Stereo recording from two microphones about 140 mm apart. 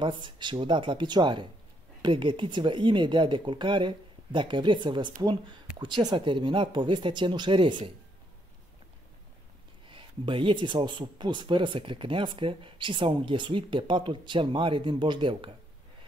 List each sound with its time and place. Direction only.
0.0 s speech: 35° right (ahead or behind)
9.8 s speech: 35° right (ahead or behind)